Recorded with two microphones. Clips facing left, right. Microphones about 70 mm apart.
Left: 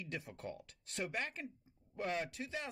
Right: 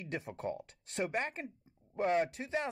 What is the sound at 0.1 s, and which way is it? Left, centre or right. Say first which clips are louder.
Speech: right 9 dB; right.